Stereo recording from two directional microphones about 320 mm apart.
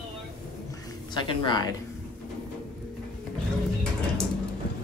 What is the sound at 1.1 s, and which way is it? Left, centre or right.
Speech, centre.